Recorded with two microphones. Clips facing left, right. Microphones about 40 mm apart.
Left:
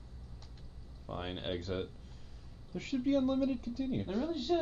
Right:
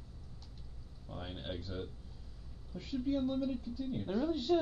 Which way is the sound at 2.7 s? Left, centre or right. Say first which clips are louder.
Left 4 dB; left.